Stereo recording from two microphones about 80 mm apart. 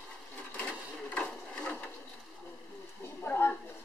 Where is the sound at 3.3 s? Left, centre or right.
Left.